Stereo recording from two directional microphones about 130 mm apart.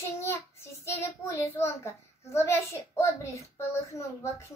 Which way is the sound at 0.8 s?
20° left (ahead or behind).